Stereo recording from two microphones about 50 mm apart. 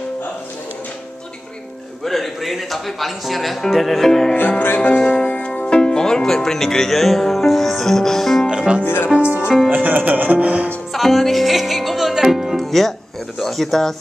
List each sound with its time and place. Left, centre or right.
2.0 s speech: centre
4.4 s music: left
5.8 s speech: centre
8.5 s music: centre
8.8 s speech: left
9.7 s music: right
10.9 s music: centre
12.5 s music: centre
13.4 s speech: centre